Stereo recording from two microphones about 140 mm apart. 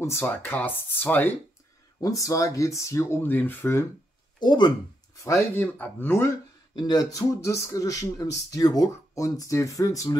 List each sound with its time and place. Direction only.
0.0 s speech: 15° left (ahead or behind)
2.0 s speech: 25° left (ahead or behind)
4.4 s speech: 30° left (ahead or behind)
5.2 s speech: 15° left (ahead or behind)
6.7 s speech: 30° left (ahead or behind)